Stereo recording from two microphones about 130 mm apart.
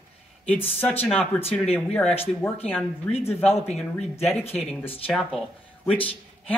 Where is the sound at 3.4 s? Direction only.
50° left (ahead or behind).